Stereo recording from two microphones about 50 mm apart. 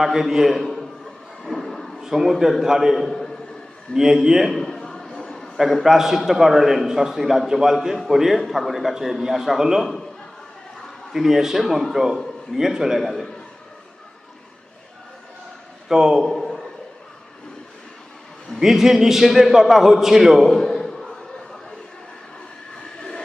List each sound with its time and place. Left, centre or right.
0.0 s a man's voice: centre
1.4 s a sound: centre
2.0 s a man's voice: centre
3.0 s a man's voice: centre
3.9 s a man's voice: centre
4.6 s a sound: centre
5.7 s a man's voice: centre
11.1 s a man's voice: centre
15.9 s a man's voice: centre
16.3 s a sound: centre
18.6 s a man's voice: centre